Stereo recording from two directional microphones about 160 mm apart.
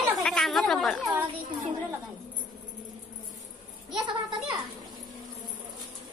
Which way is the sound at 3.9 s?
30° right (ahead or behind).